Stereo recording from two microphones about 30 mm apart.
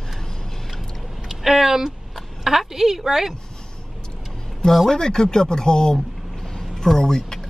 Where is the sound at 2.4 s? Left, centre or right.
Centre.